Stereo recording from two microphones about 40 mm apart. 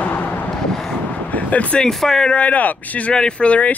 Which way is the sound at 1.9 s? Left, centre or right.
Centre.